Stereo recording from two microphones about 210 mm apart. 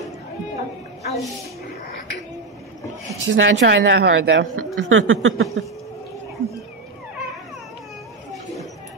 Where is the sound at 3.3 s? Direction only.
60° right (ahead or behind).